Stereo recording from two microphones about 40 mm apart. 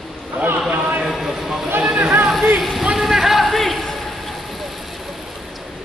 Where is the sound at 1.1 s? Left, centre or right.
Centre.